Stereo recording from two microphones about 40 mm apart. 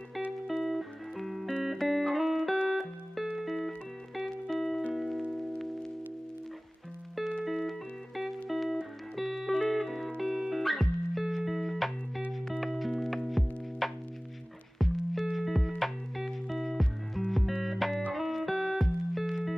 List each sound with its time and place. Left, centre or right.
0.5 s music: centre
7.4 s music: centre